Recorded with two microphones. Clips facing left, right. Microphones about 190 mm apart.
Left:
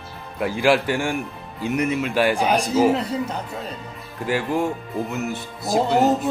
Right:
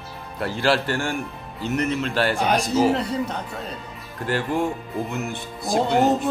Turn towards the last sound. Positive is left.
turn(degrees=5)  # may be behind; listen again after turning